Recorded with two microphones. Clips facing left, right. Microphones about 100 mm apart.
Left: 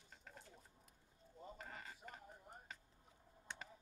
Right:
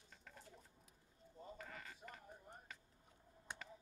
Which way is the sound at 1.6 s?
35° left (ahead or behind).